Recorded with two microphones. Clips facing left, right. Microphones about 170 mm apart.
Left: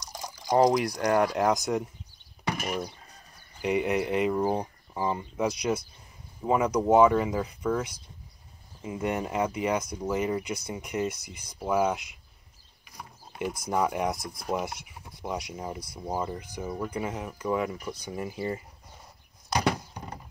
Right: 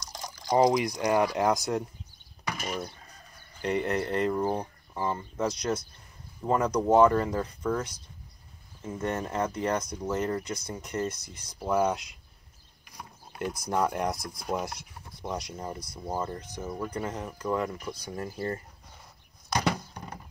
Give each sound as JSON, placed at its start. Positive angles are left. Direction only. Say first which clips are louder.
{"t": 0.1, "sound": "liquid", "louder": "left 1 dB", "side_deg": 10}
{"t": 0.6, "sound": "speech", "louder": "left 1 dB", "side_deg": -15}
{"t": 2.6, "sound": "speech", "louder": "left 1 dB", "side_deg": 0}
{"t": 3.8, "sound": "speech", "louder": "left 1 dB", "side_deg": 15}
{"t": 8.8, "sound": "speech", "louder": "left 2 dB", "side_deg": 15}